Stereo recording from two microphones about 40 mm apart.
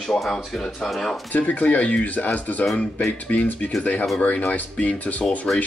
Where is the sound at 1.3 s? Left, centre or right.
Left.